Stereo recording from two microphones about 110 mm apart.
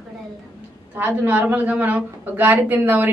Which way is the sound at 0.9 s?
15° right (ahead or behind).